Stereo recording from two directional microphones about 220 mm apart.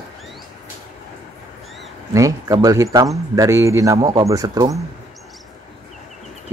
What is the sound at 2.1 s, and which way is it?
A man's voice, 15° right (ahead or behind).